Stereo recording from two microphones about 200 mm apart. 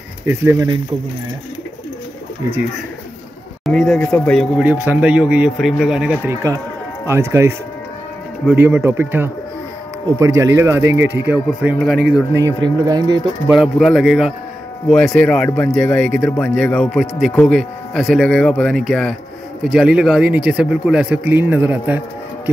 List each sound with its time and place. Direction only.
0.2 s speech: 10° right (ahead or behind)
3.6 s speech: centre (ahead or behind)
12.4 s speech: 20° right (ahead or behind)
13.5 s speech: centre (ahead or behind)